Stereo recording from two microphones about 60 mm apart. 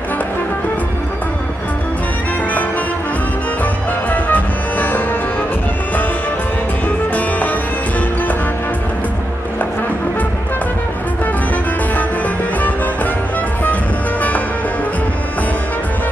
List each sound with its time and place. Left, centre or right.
4.1 s music: left
7.2 s music: left
12.5 s music: left